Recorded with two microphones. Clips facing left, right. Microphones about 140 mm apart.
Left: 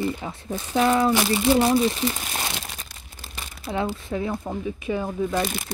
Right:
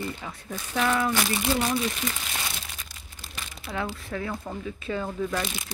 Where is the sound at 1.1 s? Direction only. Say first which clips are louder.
Left 6 dB; 20° left (ahead or behind).